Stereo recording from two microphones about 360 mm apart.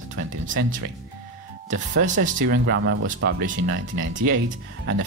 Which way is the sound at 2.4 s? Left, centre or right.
Right.